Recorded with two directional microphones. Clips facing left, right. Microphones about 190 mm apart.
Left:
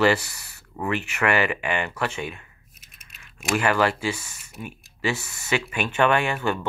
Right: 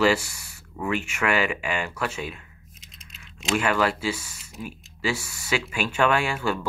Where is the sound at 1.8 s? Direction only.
Centre (ahead or behind).